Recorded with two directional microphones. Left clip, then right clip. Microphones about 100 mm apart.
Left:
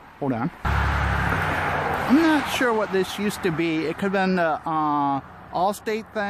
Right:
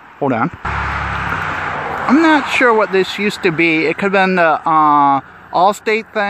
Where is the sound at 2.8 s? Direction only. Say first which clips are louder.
Right 9 dB; 30° right (ahead or behind).